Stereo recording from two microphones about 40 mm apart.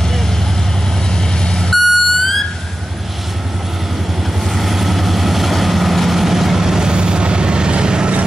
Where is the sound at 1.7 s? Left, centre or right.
Centre.